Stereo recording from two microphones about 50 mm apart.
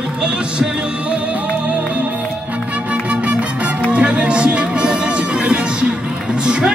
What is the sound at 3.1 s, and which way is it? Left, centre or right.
Music, right.